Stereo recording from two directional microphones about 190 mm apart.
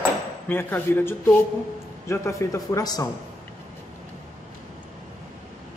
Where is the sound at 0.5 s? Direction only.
10° left (ahead or behind).